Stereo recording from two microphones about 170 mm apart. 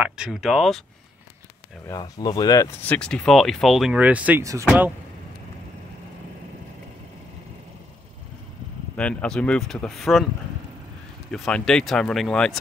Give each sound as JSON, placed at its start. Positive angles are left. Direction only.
{"t": 0.0, "sound": "speech", "side_deg": -5}
{"t": 1.9, "sound": "speech", "side_deg": 25}
{"t": 2.8, "sound": "speech", "side_deg": 5}
{"t": 8.9, "sound": "speech", "side_deg": 5}
{"t": 11.3, "sound": "speech", "side_deg": 5}